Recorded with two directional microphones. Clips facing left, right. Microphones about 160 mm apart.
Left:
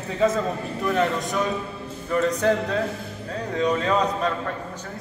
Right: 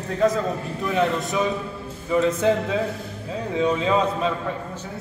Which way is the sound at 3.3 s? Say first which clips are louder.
Right 1 dB; 10° right (ahead or behind).